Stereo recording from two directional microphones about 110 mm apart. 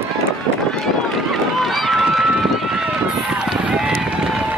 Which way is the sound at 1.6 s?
Centre (ahead or behind).